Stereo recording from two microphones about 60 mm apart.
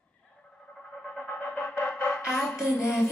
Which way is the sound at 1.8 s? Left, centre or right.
Left.